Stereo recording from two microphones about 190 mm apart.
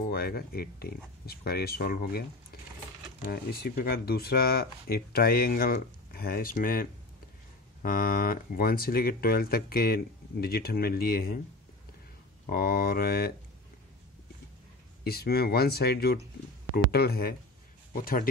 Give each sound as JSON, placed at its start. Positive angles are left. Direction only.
{"t": 0.1, "sound": "speech", "side_deg": 55}
{"t": 3.3, "sound": "speech", "side_deg": 55}
{"t": 12.4, "sound": "speech", "side_deg": 50}
{"t": 15.0, "sound": "speech", "side_deg": 55}